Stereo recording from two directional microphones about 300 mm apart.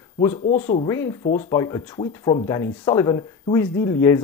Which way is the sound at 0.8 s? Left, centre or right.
Centre.